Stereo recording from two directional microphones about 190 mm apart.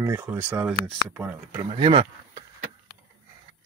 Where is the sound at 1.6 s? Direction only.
25° right (ahead or behind).